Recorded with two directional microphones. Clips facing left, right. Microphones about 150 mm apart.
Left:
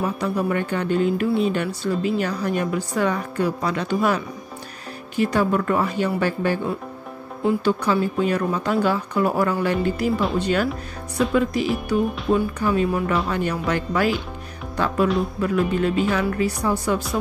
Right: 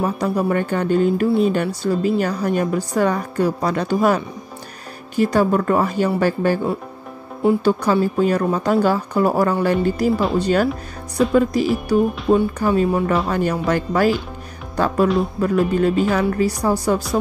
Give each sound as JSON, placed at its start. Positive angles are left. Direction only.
{"t": 0.0, "sound": "speech", "side_deg": -40}
{"t": 15.4, "sound": "speech", "side_deg": -40}